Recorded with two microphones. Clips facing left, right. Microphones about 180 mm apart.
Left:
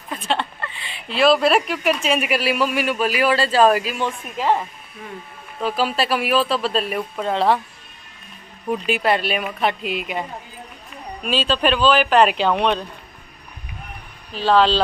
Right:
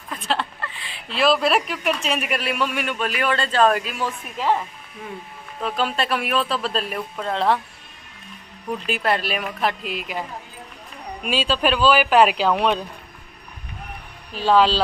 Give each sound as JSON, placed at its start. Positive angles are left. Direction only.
{"t": 0.3, "sound": "speech", "side_deg": 0}
{"t": 8.8, "sound": "speech", "side_deg": 0}
{"t": 11.2, "sound": "speech", "side_deg": -10}
{"t": 14.3, "sound": "speech", "side_deg": -10}